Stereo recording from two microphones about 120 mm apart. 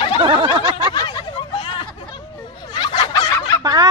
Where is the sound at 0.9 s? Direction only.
35° left (ahead or behind).